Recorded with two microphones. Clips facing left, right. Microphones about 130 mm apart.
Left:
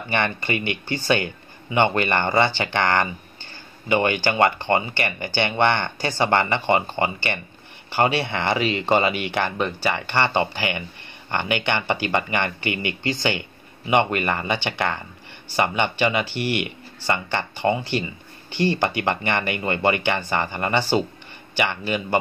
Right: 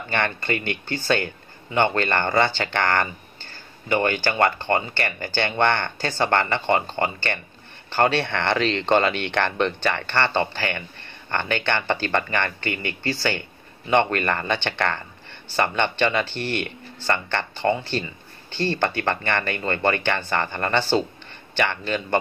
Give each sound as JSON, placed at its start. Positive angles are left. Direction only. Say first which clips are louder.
{"t": 0.1, "sound": "speech", "louder": "left 1 dB", "side_deg": 15}